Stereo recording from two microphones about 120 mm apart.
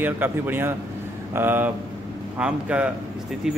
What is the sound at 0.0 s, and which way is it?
A man's voice, 15° right (ahead or behind).